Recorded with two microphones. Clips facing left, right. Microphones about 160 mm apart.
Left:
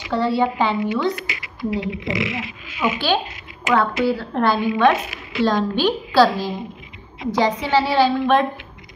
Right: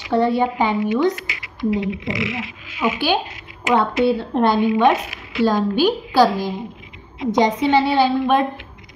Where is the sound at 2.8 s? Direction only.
15° right (ahead or behind).